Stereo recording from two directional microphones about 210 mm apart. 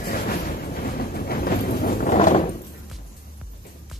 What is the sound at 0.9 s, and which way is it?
Vehicle, 45° left (ahead or behind).